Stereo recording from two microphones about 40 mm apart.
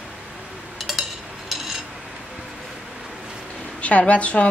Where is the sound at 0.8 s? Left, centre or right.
Centre.